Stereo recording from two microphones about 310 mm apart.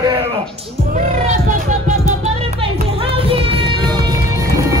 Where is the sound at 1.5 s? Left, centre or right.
Right.